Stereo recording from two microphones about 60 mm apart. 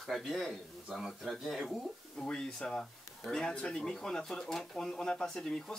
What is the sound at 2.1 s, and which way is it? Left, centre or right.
Speech, centre.